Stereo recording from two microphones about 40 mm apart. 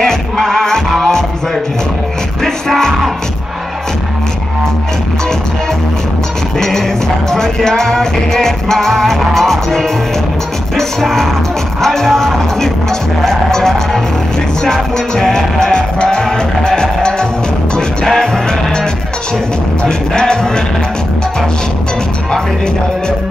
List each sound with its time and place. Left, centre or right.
0.0 s music: centre
2.4 s music: centre
7.2 s music: centre
19.8 s music: centre